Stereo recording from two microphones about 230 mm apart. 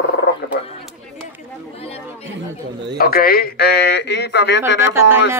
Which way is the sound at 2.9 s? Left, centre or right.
Left.